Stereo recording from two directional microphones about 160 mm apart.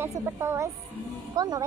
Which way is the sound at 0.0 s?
15° right (ahead or behind).